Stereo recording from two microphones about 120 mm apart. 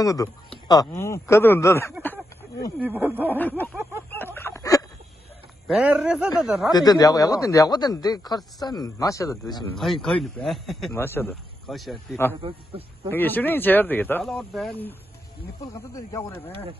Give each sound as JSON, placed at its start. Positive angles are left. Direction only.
{"t": 0.0, "sound": "speech", "side_deg": 30}
{"t": 2.8, "sound": "speech", "side_deg": -15}
{"t": 3.3, "sound": "speech", "side_deg": 15}
{"t": 4.1, "sound": "a sound", "side_deg": 15}
{"t": 5.7, "sound": "speech", "side_deg": -10}
{"t": 6.7, "sound": "speech", "side_deg": 35}
{"t": 10.0, "sound": "speech", "side_deg": 0}
{"t": 10.9, "sound": "speech", "side_deg": 20}
{"t": 11.6, "sound": "speech", "side_deg": 0}
{"t": 12.4, "sound": "a man's voice", "side_deg": -50}
{"t": 13.1, "sound": "speech", "side_deg": 15}
{"t": 14.2, "sound": "speech", "side_deg": 0}
{"t": 15.7, "sound": "speech", "side_deg": 25}